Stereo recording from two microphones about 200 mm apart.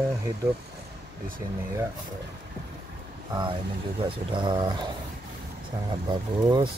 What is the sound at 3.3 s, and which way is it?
Speech, 20° right (ahead or behind).